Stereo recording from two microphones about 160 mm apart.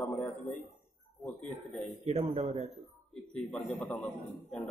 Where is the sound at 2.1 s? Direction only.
25° right (ahead or behind).